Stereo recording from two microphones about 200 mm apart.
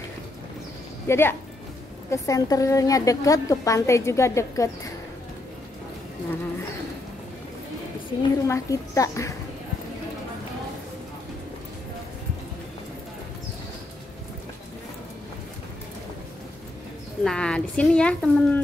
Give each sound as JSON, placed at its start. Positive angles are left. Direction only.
{"t": 1.0, "sound": "a woman's voice", "side_deg": 10}
{"t": 8.2, "sound": "a woman's voice", "side_deg": 15}
{"t": 17.2, "sound": "speech", "side_deg": 5}